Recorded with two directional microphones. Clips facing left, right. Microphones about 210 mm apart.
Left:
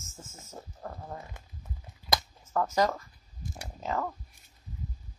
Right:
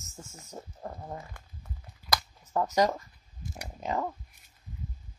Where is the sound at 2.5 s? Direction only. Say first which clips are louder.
Right 1 dB; 15° right (ahead or behind).